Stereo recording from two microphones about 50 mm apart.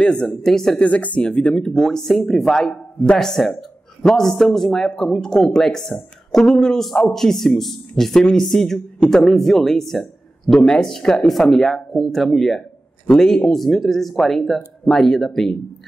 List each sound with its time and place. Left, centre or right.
0.0 s speech: left
0.3 s speech: centre
0.8 s speech: left; by 15.5 s centre